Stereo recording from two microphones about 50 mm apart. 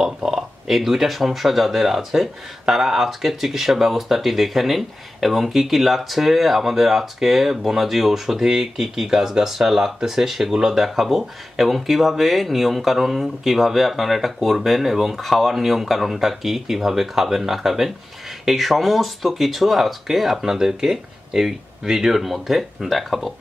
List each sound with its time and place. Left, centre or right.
0.0 s speech: centre